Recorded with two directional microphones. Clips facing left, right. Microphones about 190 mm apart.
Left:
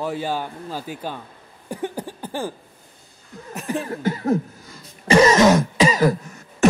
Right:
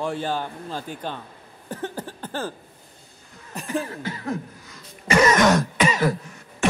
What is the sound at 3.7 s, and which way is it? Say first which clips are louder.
Laughter: left 4 dB; 35° left (ahead or behind).